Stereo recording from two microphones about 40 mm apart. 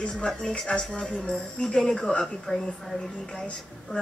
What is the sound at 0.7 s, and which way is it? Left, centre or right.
Speech, left.